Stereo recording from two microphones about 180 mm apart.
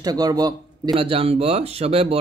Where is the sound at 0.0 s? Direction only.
20° right (ahead or behind).